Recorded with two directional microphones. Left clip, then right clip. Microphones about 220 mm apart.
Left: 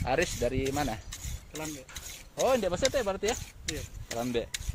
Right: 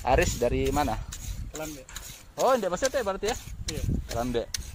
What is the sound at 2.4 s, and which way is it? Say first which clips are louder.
Speech: right 3 dB; 10° right (ahead or behind).